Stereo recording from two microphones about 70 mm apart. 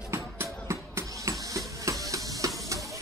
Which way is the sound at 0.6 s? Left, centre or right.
Right.